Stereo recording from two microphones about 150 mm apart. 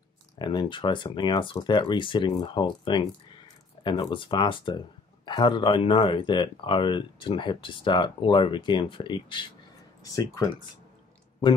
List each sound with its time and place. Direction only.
0.4 s speech: 30° left (ahead or behind)